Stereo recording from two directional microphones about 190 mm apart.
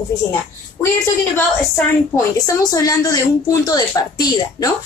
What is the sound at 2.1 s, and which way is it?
A woman's voice, 20° left (ahead or behind).